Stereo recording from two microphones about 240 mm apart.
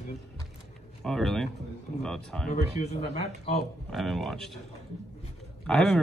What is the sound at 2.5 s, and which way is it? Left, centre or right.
Speech, left.